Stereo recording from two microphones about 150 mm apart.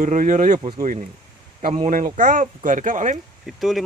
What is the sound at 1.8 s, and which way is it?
Speech, 60° right (ahead or behind).